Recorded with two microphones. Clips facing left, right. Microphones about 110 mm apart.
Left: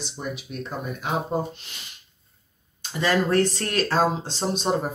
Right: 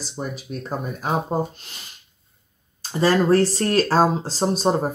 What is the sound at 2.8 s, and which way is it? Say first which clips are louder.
Speech: right 4 dB; 35° right (ahead or behind).